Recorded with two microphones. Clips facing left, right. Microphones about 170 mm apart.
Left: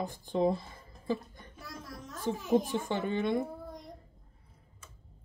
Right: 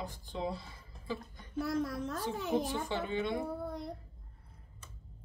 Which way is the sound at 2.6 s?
50° left (ahead or behind).